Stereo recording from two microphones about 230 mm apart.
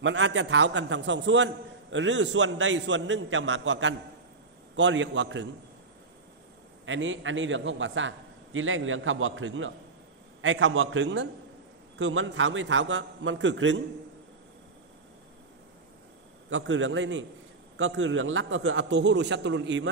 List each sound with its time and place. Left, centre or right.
0.0 s a man's voice: right
6.9 s a man's voice: right
16.4 s a man's voice: right